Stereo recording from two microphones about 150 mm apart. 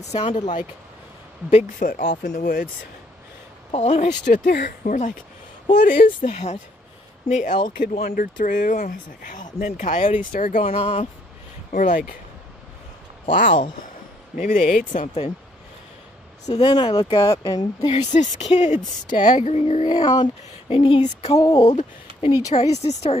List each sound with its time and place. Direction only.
0.1 s speech: 35° left (ahead or behind)
1.8 s speech: 70° left (ahead or behind)
3.7 s speech: 45° left (ahead or behind)
4.3 s speech: 80° left; by 5.1 s 60° left (ahead or behind)
5.7 s speech: 80° left
6.2 s speech: 50° left (ahead or behind)
7.6 s speech: 60° left (ahead or behind)
10.7 s speech: 45° left (ahead or behind)
11.7 s speech: 60° left (ahead or behind)
13.3 s speech: 65° left (ahead or behind)
16.5 s speech: 35° left (ahead or behind)
17.8 s speech: 50° left (ahead or behind)
19.9 s speech: 30° left (ahead or behind); by 23.1 s 45° left (ahead or behind)